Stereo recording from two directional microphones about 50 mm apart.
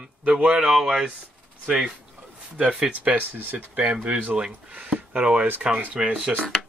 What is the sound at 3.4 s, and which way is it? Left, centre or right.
Speech, right.